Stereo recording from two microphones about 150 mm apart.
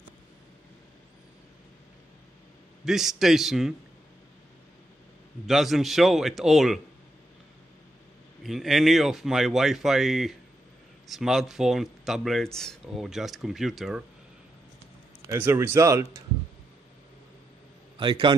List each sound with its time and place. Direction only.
2.8 s speech: centre (ahead or behind)
5.5 s speech: centre (ahead or behind)
8.4 s speech: centre (ahead or behind)
15.2 s speech: 15° right (ahead or behind)
17.9 s a man's voice: 30° right (ahead or behind)